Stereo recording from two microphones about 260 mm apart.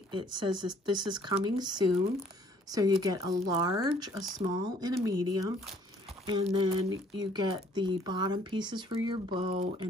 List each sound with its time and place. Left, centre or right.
0.1 s speech: centre
6.5 s speech: centre